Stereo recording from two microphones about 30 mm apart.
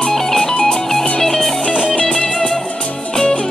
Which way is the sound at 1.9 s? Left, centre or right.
Left.